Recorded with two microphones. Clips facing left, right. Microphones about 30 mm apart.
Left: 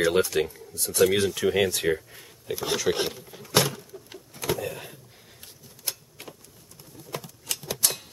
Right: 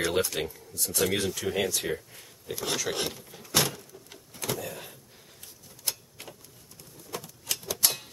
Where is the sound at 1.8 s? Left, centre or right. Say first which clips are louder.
Left 7 dB; centre.